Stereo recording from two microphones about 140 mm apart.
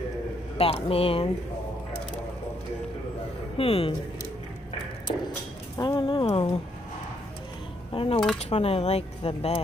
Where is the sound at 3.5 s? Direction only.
45° left (ahead or behind).